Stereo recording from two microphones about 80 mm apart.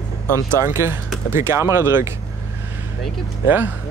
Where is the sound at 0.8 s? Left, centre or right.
Right.